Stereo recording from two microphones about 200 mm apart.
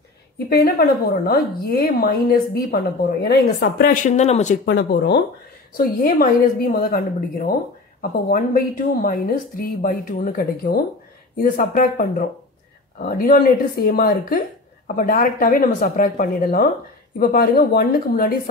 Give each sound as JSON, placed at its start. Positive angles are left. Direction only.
{"t": 0.5, "sound": "a woman's voice", "side_deg": 50}
{"t": 4.7, "sound": "a woman's voice", "side_deg": 55}